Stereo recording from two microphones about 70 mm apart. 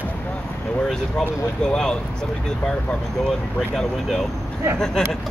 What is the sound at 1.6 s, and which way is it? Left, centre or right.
Speech, centre.